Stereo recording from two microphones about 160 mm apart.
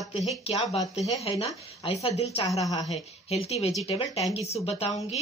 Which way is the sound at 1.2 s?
40° left (ahead or behind).